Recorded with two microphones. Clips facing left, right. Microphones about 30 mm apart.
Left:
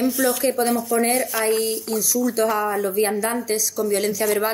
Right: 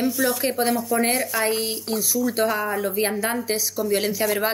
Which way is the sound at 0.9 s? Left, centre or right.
Right.